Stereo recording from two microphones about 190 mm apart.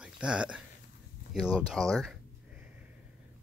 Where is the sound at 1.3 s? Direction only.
Centre (ahead or behind).